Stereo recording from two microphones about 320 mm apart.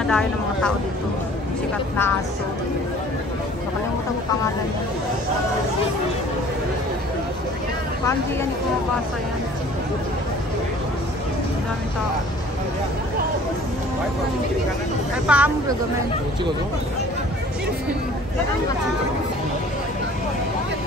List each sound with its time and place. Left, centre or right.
0.0 s speech: centre
15.2 s speech: centre